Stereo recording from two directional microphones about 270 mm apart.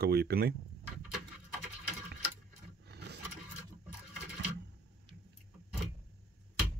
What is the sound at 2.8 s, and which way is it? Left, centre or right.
Vehicle, right.